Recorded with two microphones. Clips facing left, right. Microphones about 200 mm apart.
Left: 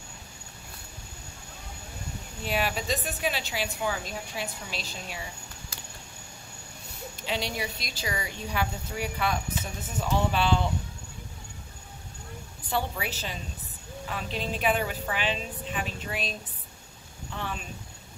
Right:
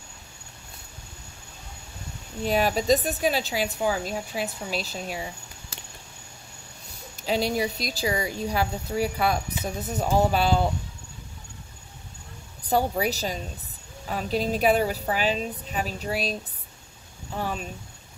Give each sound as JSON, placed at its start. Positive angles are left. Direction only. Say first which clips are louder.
{"t": 2.4, "sound": "speech", "louder": "right 7 dB", "side_deg": -40}
{"t": 7.2, "sound": "speech", "louder": "right 7 dB", "side_deg": -40}
{"t": 12.6, "sound": "speech", "louder": "right 7 dB", "side_deg": -40}
{"t": 17.4, "sound": "speech", "louder": "right 6 dB", "side_deg": -40}